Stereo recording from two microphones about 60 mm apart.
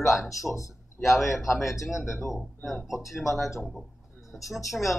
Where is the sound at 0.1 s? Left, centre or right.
Centre.